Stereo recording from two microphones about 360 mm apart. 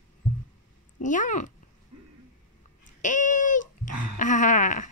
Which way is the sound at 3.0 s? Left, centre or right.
Left.